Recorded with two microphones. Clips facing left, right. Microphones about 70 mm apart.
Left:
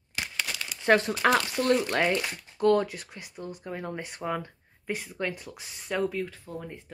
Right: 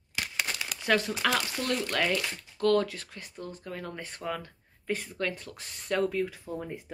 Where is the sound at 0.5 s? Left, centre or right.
Right.